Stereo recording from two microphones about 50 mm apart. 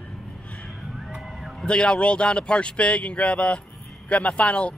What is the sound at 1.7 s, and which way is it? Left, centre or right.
A man's voice, centre.